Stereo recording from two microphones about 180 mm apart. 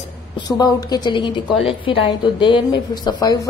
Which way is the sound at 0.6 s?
20° left (ahead or behind).